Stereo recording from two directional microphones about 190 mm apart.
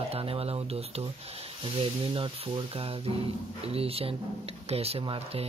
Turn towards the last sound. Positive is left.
turn(degrees=-30)  # may be behind; listen again after turning